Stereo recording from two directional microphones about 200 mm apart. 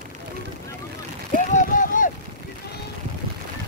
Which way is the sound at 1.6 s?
40° left (ahead or behind).